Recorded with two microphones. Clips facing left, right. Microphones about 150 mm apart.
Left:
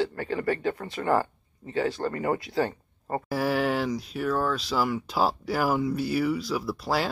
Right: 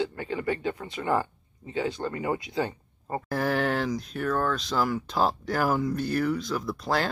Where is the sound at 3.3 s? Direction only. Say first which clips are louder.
Left 1 dB; 5° left (ahead or behind).